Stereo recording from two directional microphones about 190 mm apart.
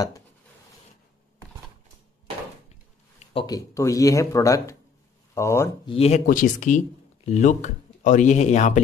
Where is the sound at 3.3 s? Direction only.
25° left (ahead or behind).